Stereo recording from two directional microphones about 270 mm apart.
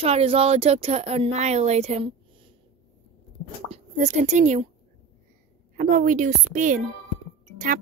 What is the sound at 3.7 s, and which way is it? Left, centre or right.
Speech, right.